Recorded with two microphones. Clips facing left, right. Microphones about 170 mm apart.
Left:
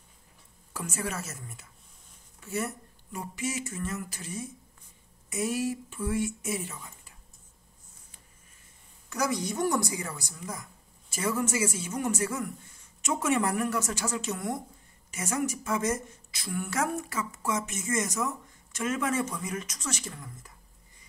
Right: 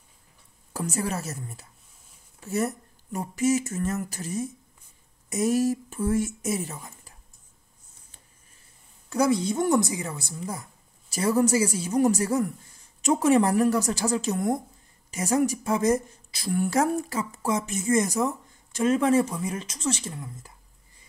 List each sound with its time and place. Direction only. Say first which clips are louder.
0.7 s a woman's voice: right 5 dB; 35° right (ahead or behind)
9.1 s a woman's voice: right 7 dB; 30° right (ahead or behind)